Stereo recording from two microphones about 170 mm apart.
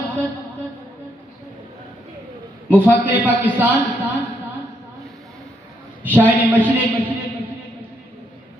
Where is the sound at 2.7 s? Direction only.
10° right (ahead or behind).